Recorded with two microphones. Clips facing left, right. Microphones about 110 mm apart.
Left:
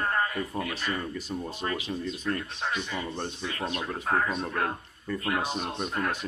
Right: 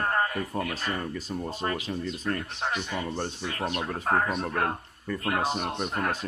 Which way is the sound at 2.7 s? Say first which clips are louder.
Right 1 dB; 65° right (ahead or behind).